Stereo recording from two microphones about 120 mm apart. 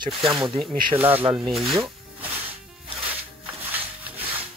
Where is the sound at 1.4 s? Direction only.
Centre (ahead or behind).